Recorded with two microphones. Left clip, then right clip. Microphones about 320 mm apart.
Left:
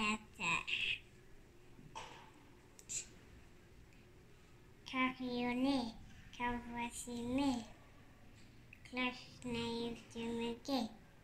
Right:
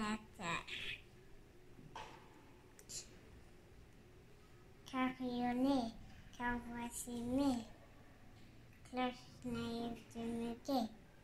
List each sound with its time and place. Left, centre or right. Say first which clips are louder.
0.0 s a sound: left 5 dB; centre
4.8 s a child's voice: left 2 dB; centre
8.9 s female singing: left 1 dB; centre